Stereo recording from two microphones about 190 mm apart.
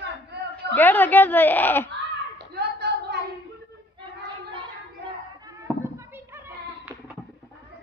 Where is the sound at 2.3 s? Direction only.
60° right (ahead or behind).